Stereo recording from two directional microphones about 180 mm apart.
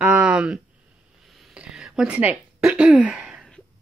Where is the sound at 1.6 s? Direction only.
5° right (ahead or behind).